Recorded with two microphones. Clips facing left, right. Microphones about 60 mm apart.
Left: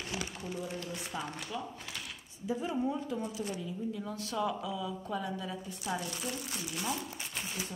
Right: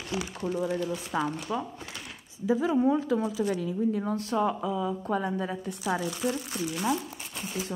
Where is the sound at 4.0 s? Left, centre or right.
Right.